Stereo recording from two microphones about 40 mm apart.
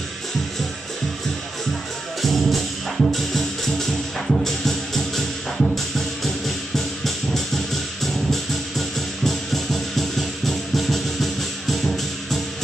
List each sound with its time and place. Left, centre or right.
2.2 s music: centre
7.1 s music: centre